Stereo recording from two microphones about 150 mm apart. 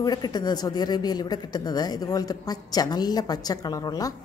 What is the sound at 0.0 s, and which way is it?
A woman's voice, 25° left (ahead or behind).